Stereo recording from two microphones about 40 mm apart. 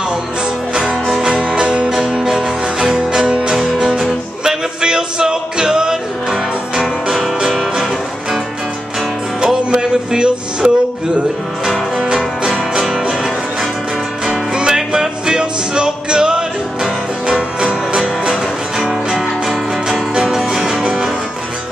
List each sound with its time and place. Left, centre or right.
0.7 s music: right
3.5 s music: centre
4.5 s music: centre
9.7 s music: right
14.2 s music: centre